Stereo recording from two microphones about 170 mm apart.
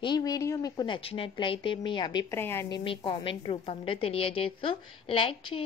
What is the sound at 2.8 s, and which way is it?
A woman's voice, 30° left (ahead or behind).